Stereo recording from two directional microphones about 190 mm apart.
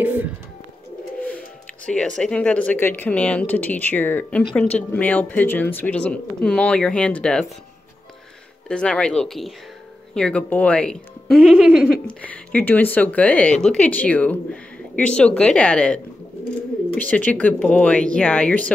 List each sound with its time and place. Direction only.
0.0 s bird: 10° right (ahead or behind)
1.9 s speech: 5° left (ahead or behind)
8.6 s speech: 5° left (ahead or behind)
17.0 s speech: 10° left (ahead or behind)